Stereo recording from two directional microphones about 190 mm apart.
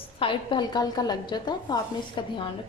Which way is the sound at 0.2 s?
25° left (ahead or behind).